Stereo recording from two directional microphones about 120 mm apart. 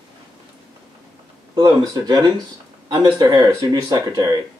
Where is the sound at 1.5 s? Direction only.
35° right (ahead or behind).